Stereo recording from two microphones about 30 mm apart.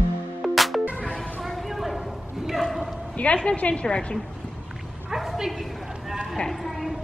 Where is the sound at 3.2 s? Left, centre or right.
Left.